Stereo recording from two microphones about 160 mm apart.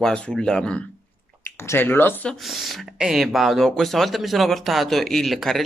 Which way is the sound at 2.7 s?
Centre (ahead or behind).